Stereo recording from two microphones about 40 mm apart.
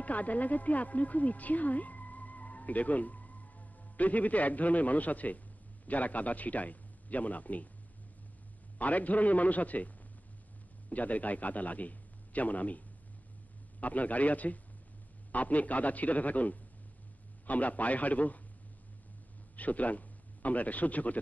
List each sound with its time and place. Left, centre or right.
0.0 s a man's voice: left
8.7 s a man's voice: left
10.9 s a man's voice: left
19.5 s a man's voice: left